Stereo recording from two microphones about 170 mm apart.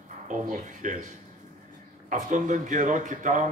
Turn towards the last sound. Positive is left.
turn(degrees=-50)  # may be behind; listen again after turning